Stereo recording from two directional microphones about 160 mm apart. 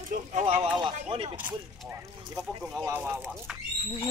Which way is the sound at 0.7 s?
30° right (ahead or behind).